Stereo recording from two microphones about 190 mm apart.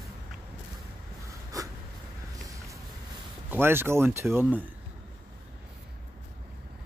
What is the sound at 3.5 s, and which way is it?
Speech, 10° right (ahead or behind).